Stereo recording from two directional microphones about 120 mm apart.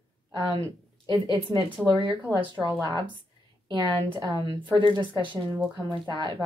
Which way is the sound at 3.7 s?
40° right (ahead or behind).